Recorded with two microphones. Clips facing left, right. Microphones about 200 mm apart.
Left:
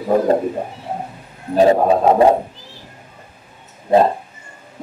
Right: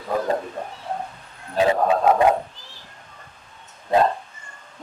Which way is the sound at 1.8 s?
25° left (ahead or behind).